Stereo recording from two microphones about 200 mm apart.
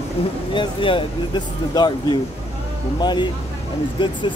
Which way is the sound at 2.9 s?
20° left (ahead or behind).